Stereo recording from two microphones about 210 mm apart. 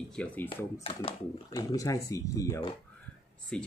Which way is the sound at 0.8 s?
25° left (ahead or behind).